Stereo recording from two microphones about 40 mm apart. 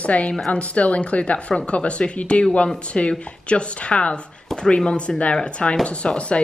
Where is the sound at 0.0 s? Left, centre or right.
Left.